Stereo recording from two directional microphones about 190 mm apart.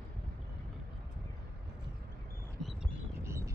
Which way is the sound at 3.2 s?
15° right (ahead or behind).